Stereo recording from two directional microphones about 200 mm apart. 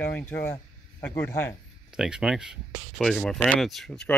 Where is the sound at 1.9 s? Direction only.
5° right (ahead or behind).